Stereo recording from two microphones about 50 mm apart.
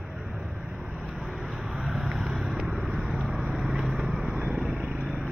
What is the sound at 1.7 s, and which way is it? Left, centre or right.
Vehicle, centre.